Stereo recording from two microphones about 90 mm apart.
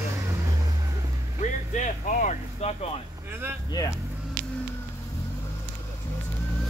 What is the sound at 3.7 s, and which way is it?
Vehicle, 45° left (ahead or behind).